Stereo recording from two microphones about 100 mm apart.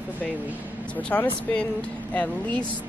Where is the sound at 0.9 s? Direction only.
15° left (ahead or behind).